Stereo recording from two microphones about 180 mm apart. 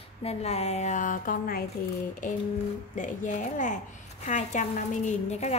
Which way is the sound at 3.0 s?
45° left (ahead or behind).